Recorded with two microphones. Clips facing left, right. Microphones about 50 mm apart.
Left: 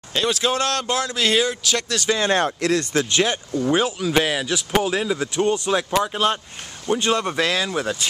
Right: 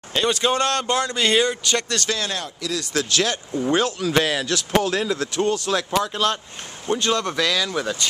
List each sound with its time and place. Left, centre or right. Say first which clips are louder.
0.1 s speech: right 1 dB; centre
2.2 s speech: left 9 dB; left
2.9 s speech: left 2 dB; left
3.7 s speech: even; centre; by 7.7 s left
7.7 s speech: even; centre